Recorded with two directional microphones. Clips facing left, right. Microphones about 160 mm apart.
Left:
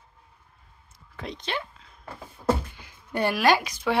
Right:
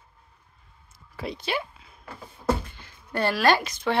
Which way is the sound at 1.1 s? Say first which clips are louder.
Right 3 dB; 5° right (ahead or behind).